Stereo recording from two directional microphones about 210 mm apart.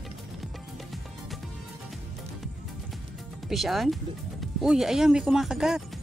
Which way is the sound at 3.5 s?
Centre (ahead or behind).